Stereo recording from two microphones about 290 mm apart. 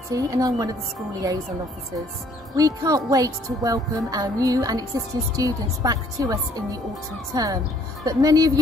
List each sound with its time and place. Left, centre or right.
0.1 s a woman's voice: centre
2.5 s a woman's voice: centre